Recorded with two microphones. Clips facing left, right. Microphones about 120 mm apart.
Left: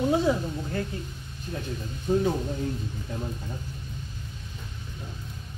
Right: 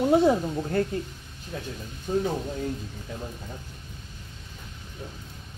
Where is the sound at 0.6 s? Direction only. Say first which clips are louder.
Right 5 dB; 45° right (ahead or behind).